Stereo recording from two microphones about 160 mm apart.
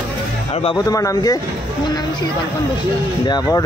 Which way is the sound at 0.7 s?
20° left (ahead or behind).